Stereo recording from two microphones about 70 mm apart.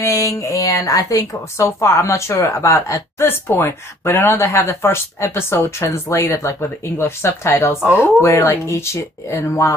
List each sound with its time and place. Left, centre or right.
0.0 s a woman's voice: left